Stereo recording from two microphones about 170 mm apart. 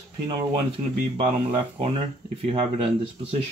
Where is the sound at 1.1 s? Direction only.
30° right (ahead or behind).